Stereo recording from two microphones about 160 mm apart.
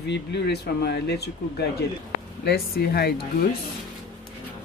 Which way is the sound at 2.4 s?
80° left.